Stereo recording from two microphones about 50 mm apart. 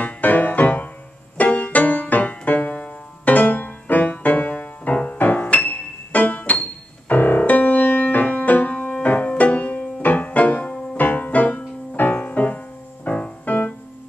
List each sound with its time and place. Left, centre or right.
0.0 s music: left
12.0 s piano: left